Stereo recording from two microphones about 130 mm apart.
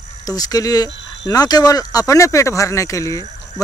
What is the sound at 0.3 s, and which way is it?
Speech, 30° left (ahead or behind).